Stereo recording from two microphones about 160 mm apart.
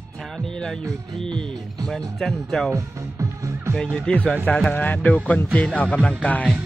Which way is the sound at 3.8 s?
5° left (ahead or behind).